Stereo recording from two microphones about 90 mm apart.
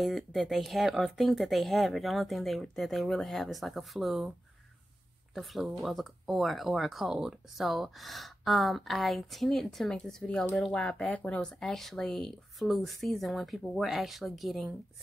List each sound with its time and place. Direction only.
0.0 s speech: centre (ahead or behind)
5.3 s speech: centre (ahead or behind)